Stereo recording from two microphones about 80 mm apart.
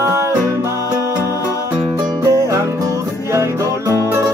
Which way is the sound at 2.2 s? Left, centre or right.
Right.